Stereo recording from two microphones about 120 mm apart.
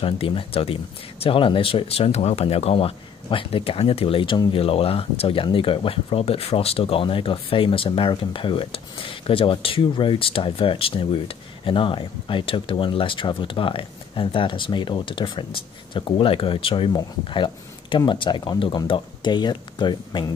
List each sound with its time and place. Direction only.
0.0 s speech: 50° left (ahead or behind)